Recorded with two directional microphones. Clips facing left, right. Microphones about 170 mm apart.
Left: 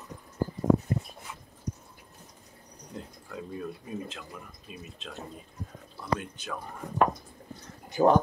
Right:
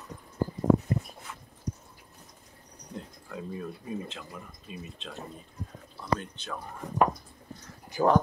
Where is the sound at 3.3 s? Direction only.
Centre (ahead or behind).